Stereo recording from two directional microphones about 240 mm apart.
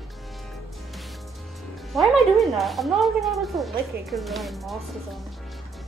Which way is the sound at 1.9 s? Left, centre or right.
Centre.